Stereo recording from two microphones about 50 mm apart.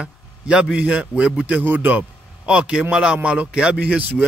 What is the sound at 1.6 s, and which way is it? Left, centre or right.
Speech, right.